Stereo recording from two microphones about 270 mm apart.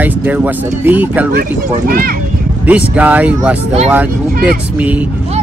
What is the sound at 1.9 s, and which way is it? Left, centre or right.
Speech, right.